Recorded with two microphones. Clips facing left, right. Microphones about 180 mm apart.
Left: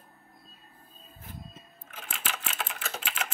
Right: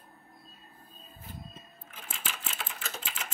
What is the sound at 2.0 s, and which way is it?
Typewriter, 80° left.